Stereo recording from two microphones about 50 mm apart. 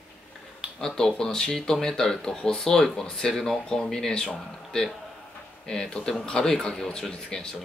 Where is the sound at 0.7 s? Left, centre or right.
Centre.